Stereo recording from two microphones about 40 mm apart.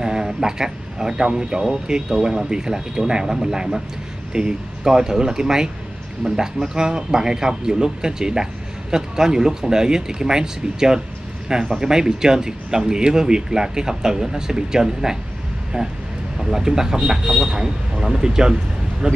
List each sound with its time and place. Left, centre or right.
0.0 s speech: centre
16.3 s speech: centre